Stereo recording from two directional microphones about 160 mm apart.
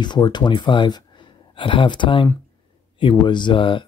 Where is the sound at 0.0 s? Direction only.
30° left (ahead or behind).